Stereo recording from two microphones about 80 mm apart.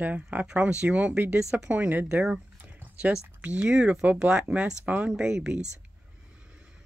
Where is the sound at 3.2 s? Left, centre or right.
Right.